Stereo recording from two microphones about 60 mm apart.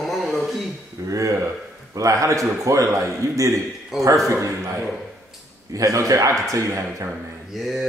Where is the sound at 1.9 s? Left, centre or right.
Right.